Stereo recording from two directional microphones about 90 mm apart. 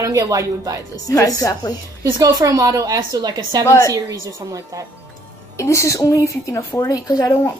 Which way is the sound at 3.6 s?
35° left (ahead or behind).